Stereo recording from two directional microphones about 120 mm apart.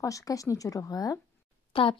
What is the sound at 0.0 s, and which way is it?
Speech, 30° left (ahead or behind).